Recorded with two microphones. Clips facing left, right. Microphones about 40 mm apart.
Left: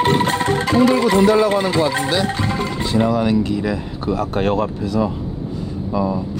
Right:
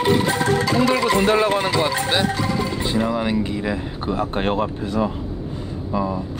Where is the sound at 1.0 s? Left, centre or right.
Right.